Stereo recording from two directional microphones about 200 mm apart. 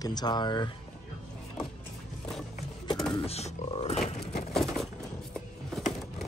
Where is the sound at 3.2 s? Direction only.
30° left (ahead or behind).